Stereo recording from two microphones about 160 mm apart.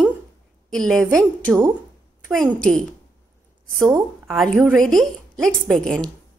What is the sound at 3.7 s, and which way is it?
Speech, 15° right (ahead or behind).